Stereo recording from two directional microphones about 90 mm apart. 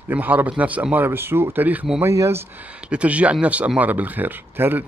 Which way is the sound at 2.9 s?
15° right (ahead or behind).